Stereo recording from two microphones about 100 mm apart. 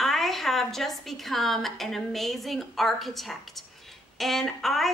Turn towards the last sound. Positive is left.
turn(degrees=0)  # may be behind; listen again after turning